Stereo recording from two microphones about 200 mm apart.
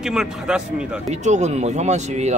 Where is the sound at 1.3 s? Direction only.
35° right (ahead or behind).